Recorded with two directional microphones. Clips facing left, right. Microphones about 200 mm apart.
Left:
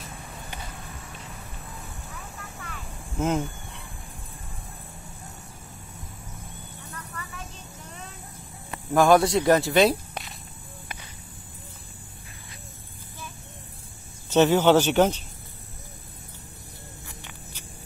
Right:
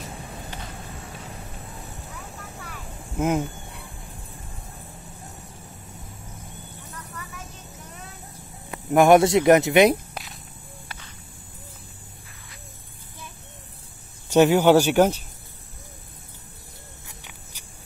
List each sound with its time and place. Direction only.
2.6 s a sound: 5° right (ahead or behind)
8.9 s speech: 20° right (ahead or behind)
14.3 s a man's voice: 10° right (ahead or behind)